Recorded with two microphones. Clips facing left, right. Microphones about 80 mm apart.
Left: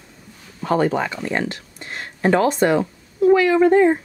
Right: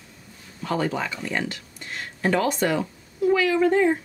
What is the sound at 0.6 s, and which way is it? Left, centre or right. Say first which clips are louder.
Speech: left 6 dB; left.